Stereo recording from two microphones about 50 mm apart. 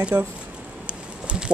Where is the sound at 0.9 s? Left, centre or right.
Right.